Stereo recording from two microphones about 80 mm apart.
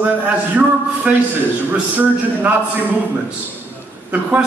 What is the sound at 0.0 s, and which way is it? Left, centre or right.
A man's voice, centre.